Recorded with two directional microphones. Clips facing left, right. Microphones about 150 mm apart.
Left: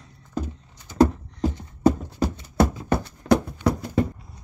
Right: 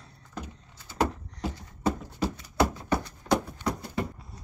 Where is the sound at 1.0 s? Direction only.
40° left (ahead or behind).